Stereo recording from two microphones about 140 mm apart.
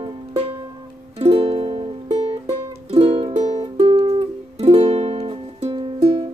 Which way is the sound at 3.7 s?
40° right (ahead or behind).